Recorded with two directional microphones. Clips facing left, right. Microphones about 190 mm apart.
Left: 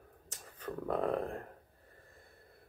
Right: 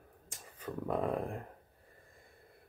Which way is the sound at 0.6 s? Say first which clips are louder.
Even; 10° right (ahead or behind).